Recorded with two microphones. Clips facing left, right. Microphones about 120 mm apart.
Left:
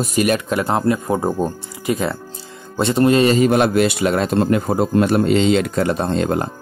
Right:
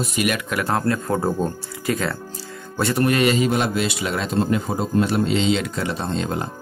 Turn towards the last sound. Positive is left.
turn(degrees=55)  # may be behind; listen again after turning